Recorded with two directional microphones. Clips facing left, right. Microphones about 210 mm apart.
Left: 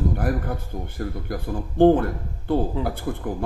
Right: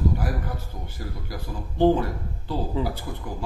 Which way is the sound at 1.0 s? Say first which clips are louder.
Left 6 dB; 55° left (ahead or behind).